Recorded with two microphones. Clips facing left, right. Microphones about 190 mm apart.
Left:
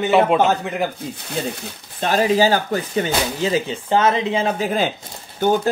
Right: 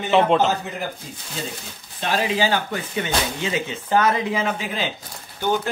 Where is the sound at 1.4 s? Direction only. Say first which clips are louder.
Left 7 dB; 60° left (ahead or behind).